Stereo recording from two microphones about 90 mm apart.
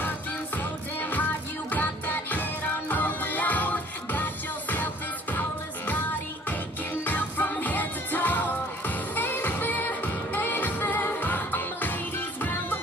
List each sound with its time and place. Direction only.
1.1 s music: 20° left (ahead or behind)